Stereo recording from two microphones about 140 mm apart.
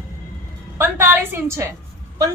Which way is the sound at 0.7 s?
15° right (ahead or behind).